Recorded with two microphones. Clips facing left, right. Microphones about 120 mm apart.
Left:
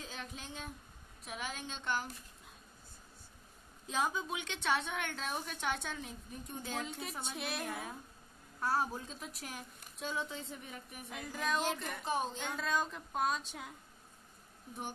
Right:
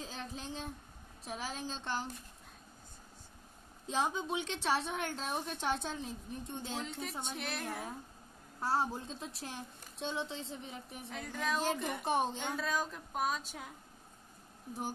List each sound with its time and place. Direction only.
0.0 s a woman's voice: 35° right (ahead or behind)
3.8 s a woman's voice: 30° right (ahead or behind)
6.9 s speech: centre (ahead or behind)
8.5 s speech: 25° right (ahead or behind)
11.1 s speech: 5° left (ahead or behind)
12.0 s a woman's voice: 60° right (ahead or behind)
12.5 s speech: 5° right (ahead or behind)